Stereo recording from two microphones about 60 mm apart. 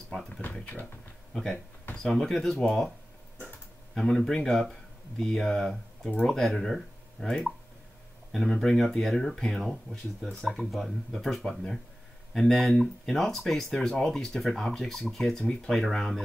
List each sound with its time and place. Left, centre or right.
0.4 s speech: left
1.3 s speech: centre
3.9 s speech: centre